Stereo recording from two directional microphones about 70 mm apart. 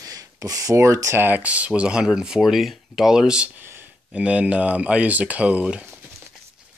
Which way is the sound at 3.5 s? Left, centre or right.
Right.